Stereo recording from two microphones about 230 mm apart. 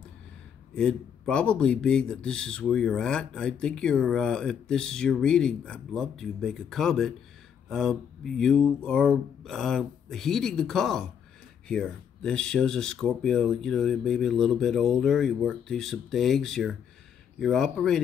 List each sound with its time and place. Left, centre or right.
0.7 s speech: centre